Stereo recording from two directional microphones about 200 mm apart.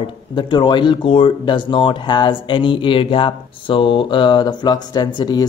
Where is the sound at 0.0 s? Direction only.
25° left (ahead or behind).